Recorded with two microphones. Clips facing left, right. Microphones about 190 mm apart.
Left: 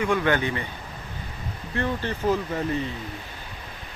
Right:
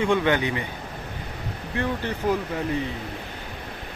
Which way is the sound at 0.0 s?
20° right (ahead or behind).